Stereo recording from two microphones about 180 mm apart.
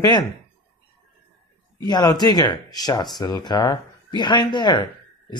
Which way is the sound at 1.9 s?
20° left (ahead or behind).